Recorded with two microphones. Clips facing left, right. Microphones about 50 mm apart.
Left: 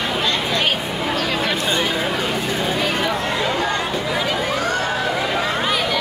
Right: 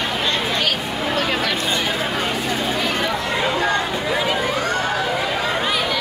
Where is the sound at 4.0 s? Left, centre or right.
Centre.